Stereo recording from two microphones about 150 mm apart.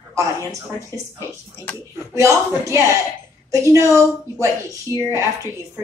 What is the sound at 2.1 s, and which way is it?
A woman's voice, 20° right (ahead or behind).